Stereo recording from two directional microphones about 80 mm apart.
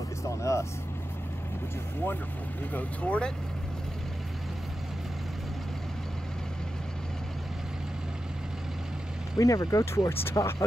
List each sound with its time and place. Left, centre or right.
0.2 s speech: left
2.7 s speech: centre
9.4 s speech: left